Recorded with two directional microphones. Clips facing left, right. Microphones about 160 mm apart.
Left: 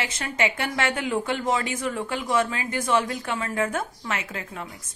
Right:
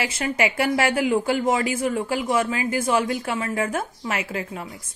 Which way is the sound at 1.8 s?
30° right (ahead or behind).